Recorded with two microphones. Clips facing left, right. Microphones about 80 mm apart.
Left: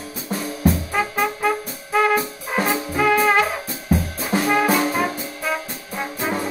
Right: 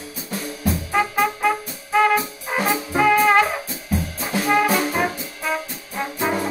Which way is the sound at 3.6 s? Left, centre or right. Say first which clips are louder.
Left 4 dB; left.